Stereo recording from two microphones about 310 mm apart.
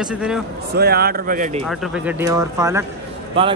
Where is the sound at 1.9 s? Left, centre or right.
Centre.